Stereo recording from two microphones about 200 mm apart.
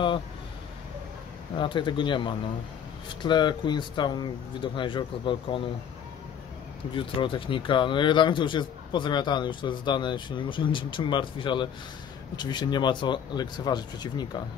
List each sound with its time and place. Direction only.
1.6 s speech: 25° left (ahead or behind)
6.9 s speech: 25° left (ahead or behind)